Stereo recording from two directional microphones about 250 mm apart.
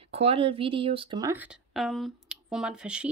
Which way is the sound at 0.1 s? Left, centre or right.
Right.